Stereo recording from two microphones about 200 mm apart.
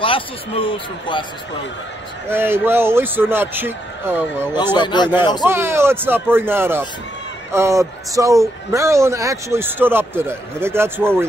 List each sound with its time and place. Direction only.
0.0 s a man's voice: 25° left (ahead or behind)
2.2 s a man's voice: 10° right (ahead or behind)
4.7 s a man's voice: 20° left (ahead or behind)
5.5 s a man's voice: 10° right (ahead or behind)